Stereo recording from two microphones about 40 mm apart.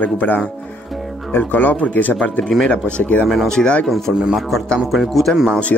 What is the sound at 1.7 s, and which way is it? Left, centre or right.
Speech, left.